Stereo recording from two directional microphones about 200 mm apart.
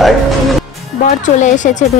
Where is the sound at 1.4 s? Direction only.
40° left (ahead or behind).